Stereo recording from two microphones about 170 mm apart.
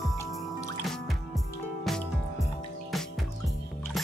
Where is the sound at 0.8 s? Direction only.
Centre (ahead or behind).